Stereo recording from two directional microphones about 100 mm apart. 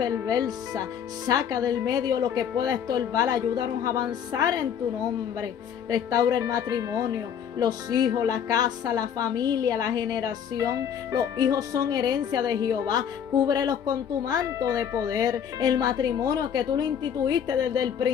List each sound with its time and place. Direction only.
0.0 s speech: 40° right (ahead or behind)